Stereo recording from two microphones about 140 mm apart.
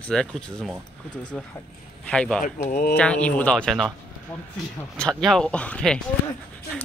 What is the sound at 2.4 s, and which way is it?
Speech, 75° left (ahead or behind).